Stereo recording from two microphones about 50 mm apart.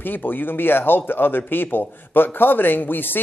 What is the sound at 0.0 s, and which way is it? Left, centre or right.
Speech, left.